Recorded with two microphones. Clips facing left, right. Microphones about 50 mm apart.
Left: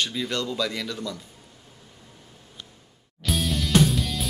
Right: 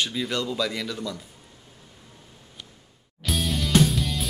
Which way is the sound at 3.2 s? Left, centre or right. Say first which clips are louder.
Even; centre.